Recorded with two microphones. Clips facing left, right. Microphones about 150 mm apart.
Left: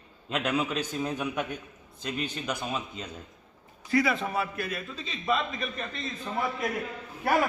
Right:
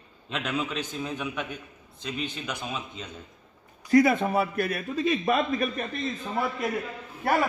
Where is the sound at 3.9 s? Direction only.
45° right (ahead or behind).